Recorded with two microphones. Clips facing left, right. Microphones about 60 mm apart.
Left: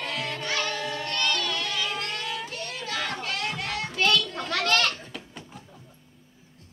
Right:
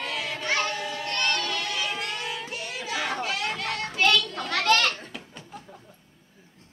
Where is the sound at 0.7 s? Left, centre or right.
Centre.